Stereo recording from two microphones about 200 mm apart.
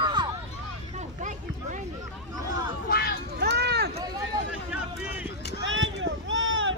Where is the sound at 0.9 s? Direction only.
40° right (ahead or behind).